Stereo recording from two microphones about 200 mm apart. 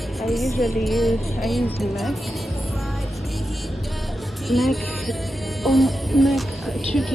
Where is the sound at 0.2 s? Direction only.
Centre (ahead or behind).